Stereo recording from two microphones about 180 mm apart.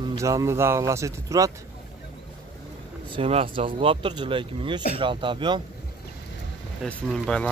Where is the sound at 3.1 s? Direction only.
30° right (ahead or behind).